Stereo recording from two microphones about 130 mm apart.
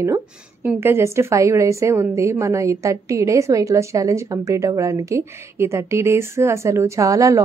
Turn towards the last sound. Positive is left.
turn(degrees=-25)  # may be behind; listen again after turning